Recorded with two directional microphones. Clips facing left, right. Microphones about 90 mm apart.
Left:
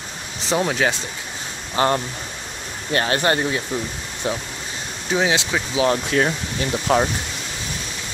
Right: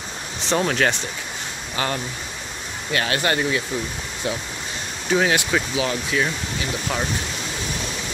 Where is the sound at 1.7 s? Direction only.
35° left (ahead or behind).